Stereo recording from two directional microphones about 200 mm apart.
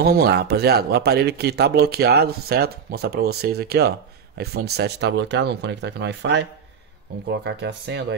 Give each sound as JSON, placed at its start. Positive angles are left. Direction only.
{"t": 0.0, "sound": "speech", "side_deg": -50}